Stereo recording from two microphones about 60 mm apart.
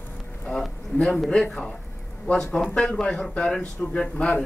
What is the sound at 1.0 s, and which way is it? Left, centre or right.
Speech, centre.